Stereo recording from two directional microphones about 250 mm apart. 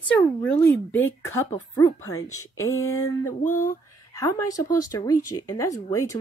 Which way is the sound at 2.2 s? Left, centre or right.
Left.